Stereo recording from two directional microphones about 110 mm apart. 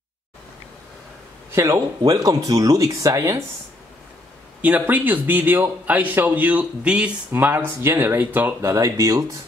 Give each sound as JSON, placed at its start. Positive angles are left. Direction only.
{"t": 1.5, "sound": "speech", "side_deg": -25}
{"t": 4.6, "sound": "speech", "side_deg": -15}
{"t": 8.7, "sound": "speech", "side_deg": -30}